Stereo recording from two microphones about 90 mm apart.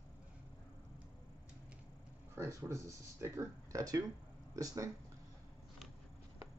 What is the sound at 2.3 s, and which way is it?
Speech, 30° right (ahead or behind).